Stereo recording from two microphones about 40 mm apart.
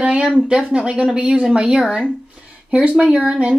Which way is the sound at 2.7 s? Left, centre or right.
Right.